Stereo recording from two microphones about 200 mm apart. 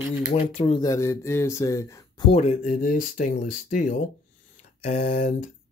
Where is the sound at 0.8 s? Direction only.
15° left (ahead or behind).